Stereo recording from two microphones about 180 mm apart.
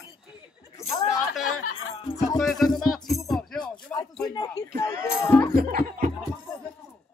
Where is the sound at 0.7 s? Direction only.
15° left (ahead or behind).